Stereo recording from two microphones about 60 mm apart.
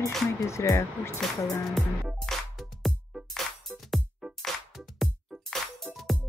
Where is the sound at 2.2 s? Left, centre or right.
Centre.